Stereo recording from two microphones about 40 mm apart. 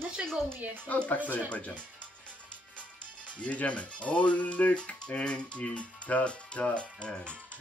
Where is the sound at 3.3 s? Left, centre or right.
Left.